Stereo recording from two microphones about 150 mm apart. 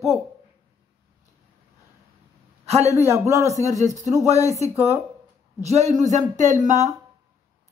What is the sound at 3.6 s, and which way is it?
Speech, 20° left (ahead or behind).